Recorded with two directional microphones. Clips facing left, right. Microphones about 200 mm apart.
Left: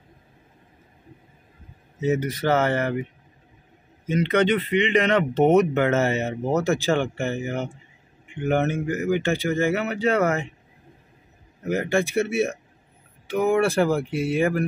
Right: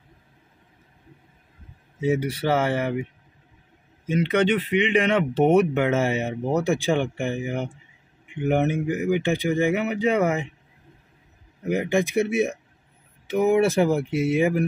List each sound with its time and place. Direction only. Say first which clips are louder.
2.0 s speech: even; 10° right (ahead or behind)
4.1 s speech: left 1 dB; 5° right (ahead or behind)
11.6 s speech: even; 15° right (ahead or behind)